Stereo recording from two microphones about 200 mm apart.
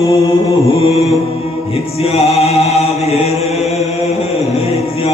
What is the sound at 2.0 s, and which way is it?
Chant, 30° left (ahead or behind).